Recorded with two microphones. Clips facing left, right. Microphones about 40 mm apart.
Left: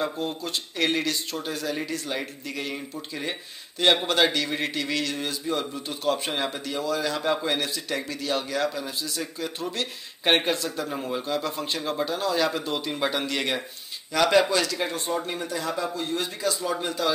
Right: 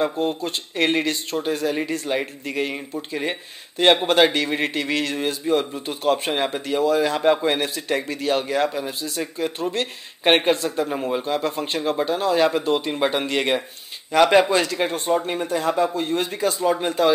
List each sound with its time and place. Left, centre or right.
0.4 s speech: right
10.9 s speech: centre
11.2 s speech: right